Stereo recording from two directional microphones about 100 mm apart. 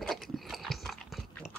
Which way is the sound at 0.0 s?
Centre (ahead or behind).